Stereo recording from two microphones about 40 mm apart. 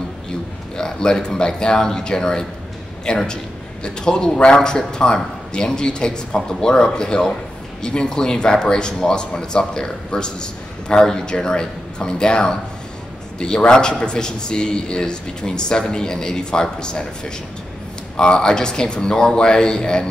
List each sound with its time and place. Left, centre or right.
0.7 s speech: centre